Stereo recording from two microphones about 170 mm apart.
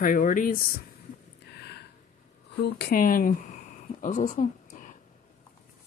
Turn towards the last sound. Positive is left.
turn(degrees=50)  # may be behind; listen again after turning